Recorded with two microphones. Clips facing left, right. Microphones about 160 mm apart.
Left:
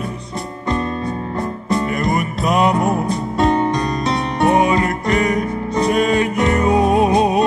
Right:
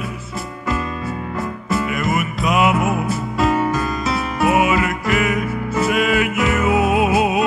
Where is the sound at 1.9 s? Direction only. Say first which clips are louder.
Left 2 dB; 40° left (ahead or behind).